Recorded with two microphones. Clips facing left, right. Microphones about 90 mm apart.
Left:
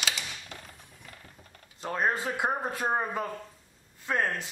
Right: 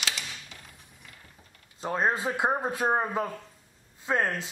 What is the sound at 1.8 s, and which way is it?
A man's voice, 20° right (ahead or behind).